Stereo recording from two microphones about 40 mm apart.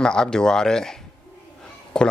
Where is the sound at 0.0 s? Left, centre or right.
Centre.